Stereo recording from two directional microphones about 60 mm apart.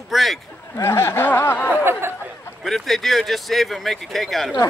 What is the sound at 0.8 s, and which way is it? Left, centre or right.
Snicker, left.